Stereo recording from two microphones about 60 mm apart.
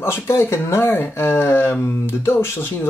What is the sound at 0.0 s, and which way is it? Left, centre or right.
Speech, left.